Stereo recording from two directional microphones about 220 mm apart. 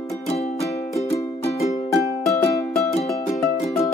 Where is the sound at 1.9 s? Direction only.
15° left (ahead or behind).